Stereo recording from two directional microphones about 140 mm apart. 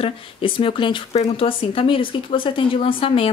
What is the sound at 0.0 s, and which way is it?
Speech, 40° left (ahead or behind).